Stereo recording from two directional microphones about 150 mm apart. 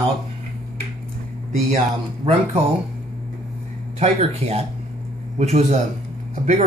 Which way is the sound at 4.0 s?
45° right (ahead or behind).